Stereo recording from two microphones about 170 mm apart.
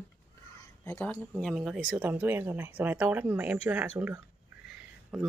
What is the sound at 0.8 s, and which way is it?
Speech, 15° left (ahead or behind).